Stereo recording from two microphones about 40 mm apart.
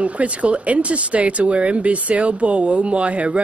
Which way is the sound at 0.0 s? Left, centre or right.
Right.